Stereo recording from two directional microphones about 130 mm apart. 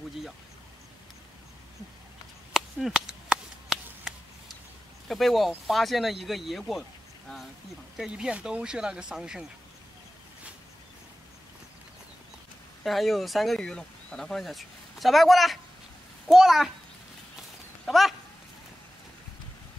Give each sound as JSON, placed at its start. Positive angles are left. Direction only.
{"t": 2.5, "sound": "chop", "side_deg": 0}
{"t": 5.0, "sound": "speech", "side_deg": 0}
{"t": 8.0, "sound": "speech", "side_deg": -5}
{"t": 12.8, "sound": "speech", "side_deg": 0}
{"t": 17.8, "sound": "speech", "side_deg": 0}